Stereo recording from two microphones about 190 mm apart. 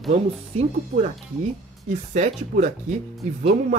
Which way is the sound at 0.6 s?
35° right (ahead or behind).